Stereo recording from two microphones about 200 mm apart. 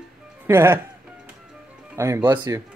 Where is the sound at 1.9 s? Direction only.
15° right (ahead or behind).